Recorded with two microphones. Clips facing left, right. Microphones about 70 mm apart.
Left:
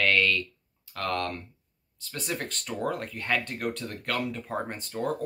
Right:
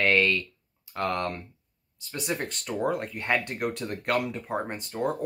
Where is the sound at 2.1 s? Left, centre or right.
Centre.